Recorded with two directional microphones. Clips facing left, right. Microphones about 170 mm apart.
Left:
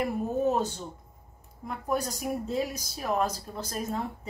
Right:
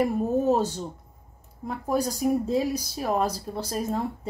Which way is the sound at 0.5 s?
35° right (ahead or behind).